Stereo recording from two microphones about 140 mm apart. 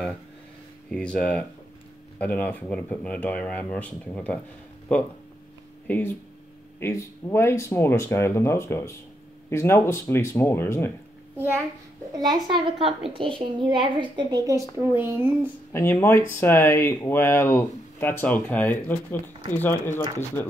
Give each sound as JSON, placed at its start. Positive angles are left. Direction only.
{"t": 0.9, "sound": "speech", "side_deg": 10}
{"t": 12.2, "sound": "a woman's voice", "side_deg": -35}
{"t": 15.7, "sound": "speech", "side_deg": 20}